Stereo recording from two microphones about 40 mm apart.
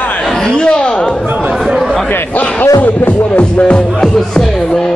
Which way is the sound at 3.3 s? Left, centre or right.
Left.